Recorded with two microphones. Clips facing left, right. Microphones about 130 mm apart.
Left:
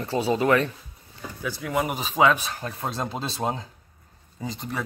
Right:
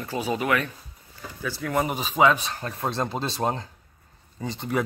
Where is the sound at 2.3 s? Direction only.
5° left (ahead or behind).